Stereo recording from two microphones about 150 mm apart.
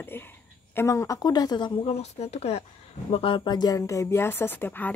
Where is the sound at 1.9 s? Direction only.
45° left (ahead or behind).